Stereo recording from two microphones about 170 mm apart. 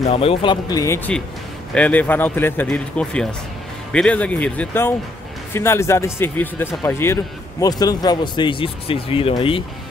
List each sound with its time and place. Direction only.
0.1 s speech: 35° left (ahead or behind)